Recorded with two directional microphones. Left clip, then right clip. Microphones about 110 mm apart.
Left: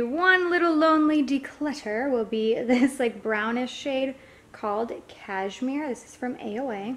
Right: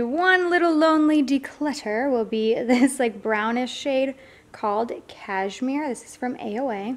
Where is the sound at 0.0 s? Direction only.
35° right (ahead or behind).